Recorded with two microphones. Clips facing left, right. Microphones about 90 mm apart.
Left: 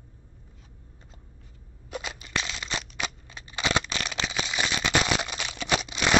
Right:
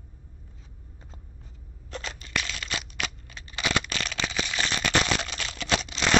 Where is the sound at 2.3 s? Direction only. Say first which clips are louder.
Even; 25° left (ahead or behind).